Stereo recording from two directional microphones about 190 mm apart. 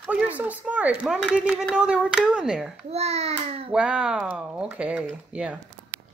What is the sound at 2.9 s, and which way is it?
Speech, 35° right (ahead or behind).